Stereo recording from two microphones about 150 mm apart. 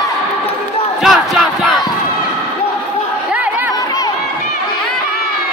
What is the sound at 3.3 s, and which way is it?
Chatter, 10° right (ahead or behind).